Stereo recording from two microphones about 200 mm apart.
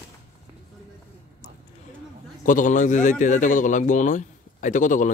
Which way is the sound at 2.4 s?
40° left (ahead or behind).